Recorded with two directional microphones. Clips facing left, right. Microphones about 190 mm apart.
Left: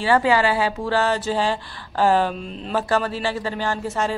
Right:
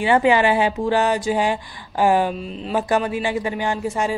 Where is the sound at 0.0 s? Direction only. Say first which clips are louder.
Right 2 dB; 20° right (ahead or behind).